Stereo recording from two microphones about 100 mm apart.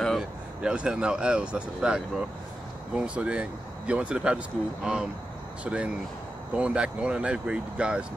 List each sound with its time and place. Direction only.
0.0 s a sound: centre (ahead or behind)
0.6 s speech: 10° right (ahead or behind)
5.6 s speech: 10° right (ahead or behind)